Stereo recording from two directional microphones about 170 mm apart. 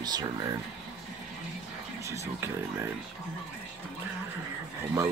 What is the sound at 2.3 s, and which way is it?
Speech, 15° right (ahead or behind).